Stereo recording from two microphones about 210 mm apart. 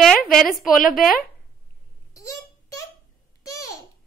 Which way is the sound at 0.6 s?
40° left (ahead or behind).